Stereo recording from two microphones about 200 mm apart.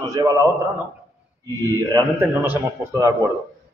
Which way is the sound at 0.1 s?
15° right (ahead or behind).